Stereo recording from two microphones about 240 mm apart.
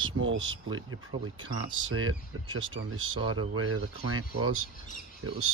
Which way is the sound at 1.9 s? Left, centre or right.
Right.